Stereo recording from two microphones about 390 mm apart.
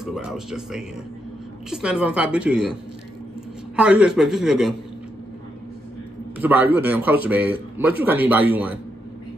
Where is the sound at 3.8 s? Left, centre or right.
Centre.